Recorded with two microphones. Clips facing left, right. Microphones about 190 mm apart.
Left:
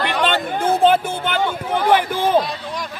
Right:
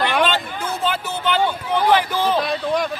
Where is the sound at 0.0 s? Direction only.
55° left (ahead or behind).